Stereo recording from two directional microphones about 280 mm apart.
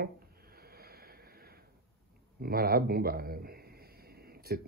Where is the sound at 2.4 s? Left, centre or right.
Right.